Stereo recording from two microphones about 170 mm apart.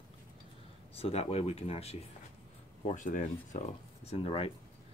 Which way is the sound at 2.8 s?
50° left (ahead or behind).